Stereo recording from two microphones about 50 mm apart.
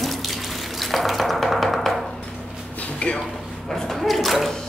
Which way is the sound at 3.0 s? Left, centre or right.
Left.